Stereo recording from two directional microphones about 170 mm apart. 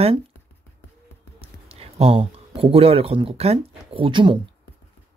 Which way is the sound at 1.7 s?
35° right (ahead or behind).